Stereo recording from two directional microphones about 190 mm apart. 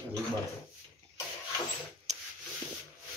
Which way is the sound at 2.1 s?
35° right (ahead or behind).